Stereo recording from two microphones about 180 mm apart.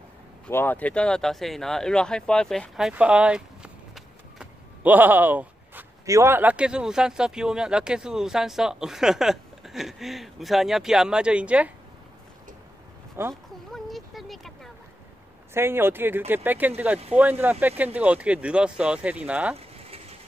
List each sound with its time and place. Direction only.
0.5 s speech: 10° left (ahead or behind); by 11.7 s 5° right (ahead or behind)
13.3 s a sound: centre (ahead or behind)
15.5 s speech: 15° right (ahead or behind)
19.5 s pigeon: 35° right (ahead or behind)